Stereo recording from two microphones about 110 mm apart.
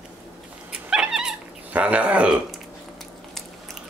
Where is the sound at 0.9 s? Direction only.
5° right (ahead or behind).